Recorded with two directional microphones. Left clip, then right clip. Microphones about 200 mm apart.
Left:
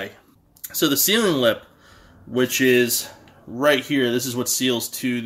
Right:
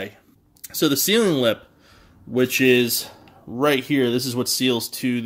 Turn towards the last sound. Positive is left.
turn(degrees=-35)  # may be behind; listen again after turning